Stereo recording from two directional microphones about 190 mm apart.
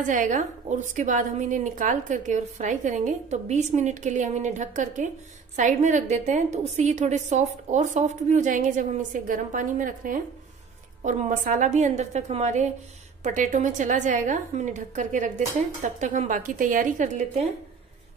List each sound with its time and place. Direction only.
0.0 s a woman's voice: 40° right (ahead or behind)